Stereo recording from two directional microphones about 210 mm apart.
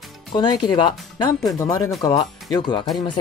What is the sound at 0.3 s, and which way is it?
Speech, 20° left (ahead or behind).